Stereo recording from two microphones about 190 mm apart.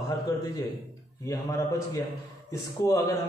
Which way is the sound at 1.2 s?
15° left (ahead or behind).